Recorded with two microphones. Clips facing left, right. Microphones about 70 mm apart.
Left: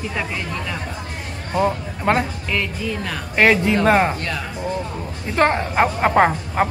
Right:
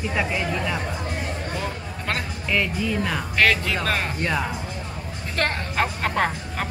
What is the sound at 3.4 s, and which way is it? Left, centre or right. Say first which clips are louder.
Speech: left 6 dB; left.